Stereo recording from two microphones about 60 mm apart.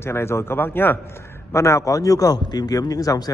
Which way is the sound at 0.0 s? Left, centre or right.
Left.